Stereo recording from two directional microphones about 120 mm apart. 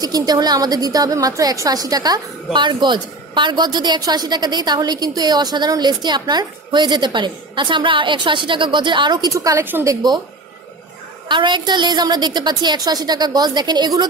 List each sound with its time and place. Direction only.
0.0 s a woman's voice: 30° right (ahead or behind)
9.3 s a woman's voice: 25° right (ahead or behind)
9.7 s a woman's voice: 15° right (ahead or behind)
11.2 s a woman's voice: 40° right (ahead or behind)